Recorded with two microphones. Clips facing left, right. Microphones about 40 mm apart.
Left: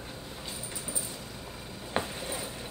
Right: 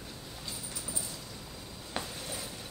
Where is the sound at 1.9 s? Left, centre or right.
Left.